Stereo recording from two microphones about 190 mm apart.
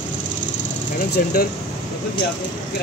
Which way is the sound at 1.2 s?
50° left (ahead or behind).